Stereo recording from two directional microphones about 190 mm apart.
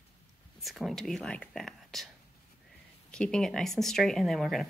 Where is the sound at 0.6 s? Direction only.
Centre (ahead or behind).